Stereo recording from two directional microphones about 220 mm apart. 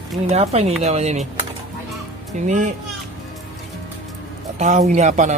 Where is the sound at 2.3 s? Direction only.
30° right (ahead or behind).